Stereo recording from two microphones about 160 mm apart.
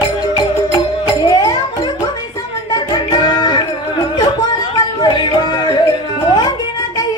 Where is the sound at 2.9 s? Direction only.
25° left (ahead or behind).